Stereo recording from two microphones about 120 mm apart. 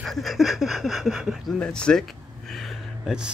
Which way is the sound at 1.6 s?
5° left (ahead or behind).